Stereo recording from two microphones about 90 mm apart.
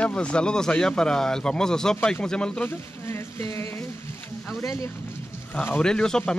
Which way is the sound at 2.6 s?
25° left (ahead or behind).